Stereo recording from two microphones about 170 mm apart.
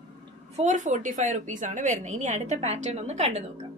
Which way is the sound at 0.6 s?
45° right (ahead or behind).